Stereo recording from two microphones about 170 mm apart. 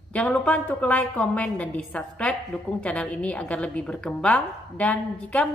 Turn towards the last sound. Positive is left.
turn(degrees=10)  # may be behind; listen again after turning